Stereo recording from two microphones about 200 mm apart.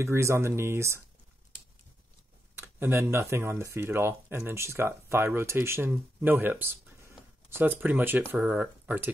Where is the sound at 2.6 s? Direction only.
10° right (ahead or behind).